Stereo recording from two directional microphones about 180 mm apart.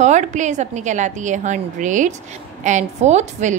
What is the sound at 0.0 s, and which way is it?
A woman's voice, 40° right (ahead or behind).